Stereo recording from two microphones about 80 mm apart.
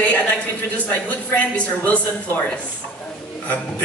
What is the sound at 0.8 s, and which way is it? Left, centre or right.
A man's voice, centre.